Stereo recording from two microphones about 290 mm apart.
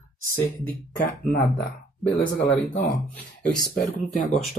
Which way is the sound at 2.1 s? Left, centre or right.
Left.